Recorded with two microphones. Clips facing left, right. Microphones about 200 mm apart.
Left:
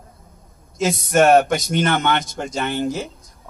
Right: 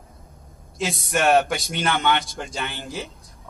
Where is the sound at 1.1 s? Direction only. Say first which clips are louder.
Left 5 dB; 40° left (ahead or behind).